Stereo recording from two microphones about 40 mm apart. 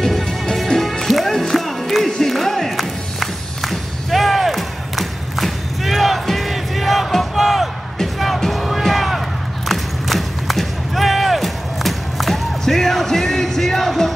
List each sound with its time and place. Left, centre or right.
0.0 s music: centre
9.7 s a sound: centre
12.6 s music: centre